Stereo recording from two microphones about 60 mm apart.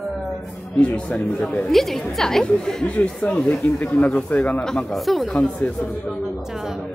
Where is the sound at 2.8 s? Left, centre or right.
Left.